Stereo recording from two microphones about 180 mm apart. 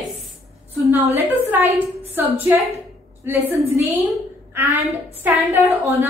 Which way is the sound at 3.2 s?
10° right (ahead or behind).